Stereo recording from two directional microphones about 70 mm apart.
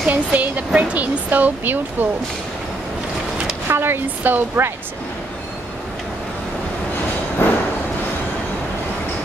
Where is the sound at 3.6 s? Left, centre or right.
Right.